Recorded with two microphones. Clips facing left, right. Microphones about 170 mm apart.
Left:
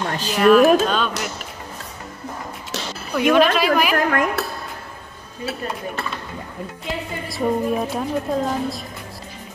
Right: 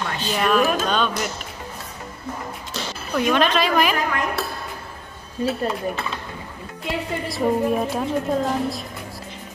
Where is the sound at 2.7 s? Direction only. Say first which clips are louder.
Left 2 dB; 80° left.